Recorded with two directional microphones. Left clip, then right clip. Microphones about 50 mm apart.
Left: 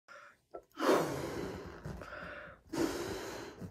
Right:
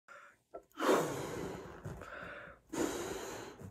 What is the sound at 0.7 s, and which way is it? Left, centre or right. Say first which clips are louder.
Gasp: left 1 dB; left.